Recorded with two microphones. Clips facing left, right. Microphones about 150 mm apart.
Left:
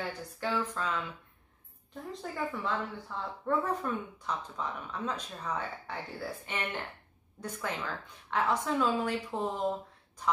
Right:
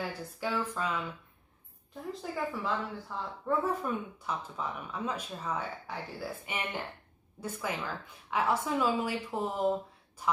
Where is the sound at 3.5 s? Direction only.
5° right (ahead or behind).